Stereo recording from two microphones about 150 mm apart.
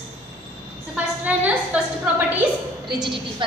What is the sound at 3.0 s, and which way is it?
Speech, 30° right (ahead or behind).